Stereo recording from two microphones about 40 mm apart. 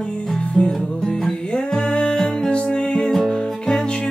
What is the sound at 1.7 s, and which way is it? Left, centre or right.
Music, left.